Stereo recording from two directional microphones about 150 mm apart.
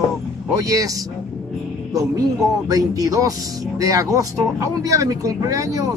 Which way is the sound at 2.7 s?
25° right (ahead or behind).